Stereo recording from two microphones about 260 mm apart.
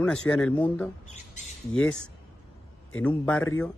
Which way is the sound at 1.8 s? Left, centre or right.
Centre.